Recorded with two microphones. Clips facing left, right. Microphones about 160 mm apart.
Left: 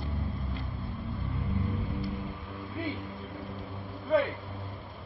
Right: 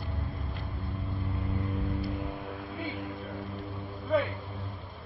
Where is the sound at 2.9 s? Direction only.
Centre (ahead or behind).